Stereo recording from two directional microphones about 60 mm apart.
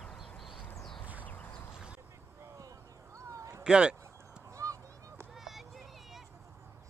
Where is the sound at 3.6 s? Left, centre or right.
Centre.